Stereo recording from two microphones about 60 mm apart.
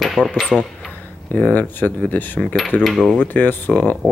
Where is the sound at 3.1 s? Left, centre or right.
Left.